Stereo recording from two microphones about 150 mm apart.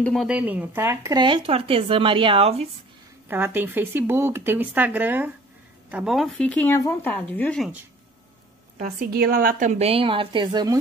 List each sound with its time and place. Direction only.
0.0 s speech: centre (ahead or behind)
0.4 s speech: 10° right (ahead or behind)
1.1 s speech: 30° right (ahead or behind)
3.3 s speech: 15° right (ahead or behind); by 7.7 s 5° left (ahead or behind)
8.7 s a woman's voice: 80° right; by 10.8 s 25° right (ahead or behind)